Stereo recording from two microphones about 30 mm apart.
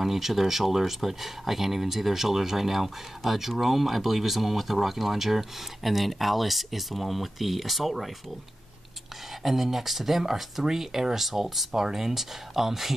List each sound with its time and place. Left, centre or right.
0.0 s speech: centre
9.4 s speech: centre